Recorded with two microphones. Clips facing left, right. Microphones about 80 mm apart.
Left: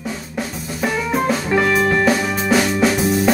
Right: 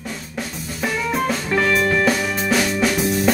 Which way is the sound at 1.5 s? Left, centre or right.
Centre.